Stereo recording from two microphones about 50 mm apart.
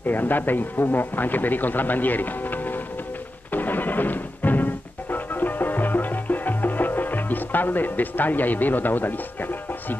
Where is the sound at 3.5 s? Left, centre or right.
Left.